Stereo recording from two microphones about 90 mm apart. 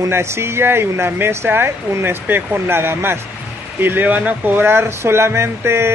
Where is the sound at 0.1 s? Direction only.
30° right (ahead or behind).